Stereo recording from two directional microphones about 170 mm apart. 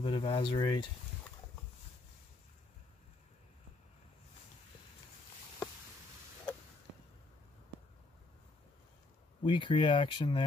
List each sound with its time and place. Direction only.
0.0 s speech: 30° left (ahead or behind)
9.4 s speech: 30° left (ahead or behind)